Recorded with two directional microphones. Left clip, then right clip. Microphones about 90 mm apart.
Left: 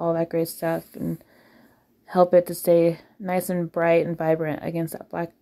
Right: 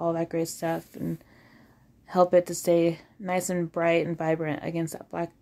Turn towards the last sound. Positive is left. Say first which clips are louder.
# left 2 dB
turn(degrees=30)  # may be behind; listen again after turning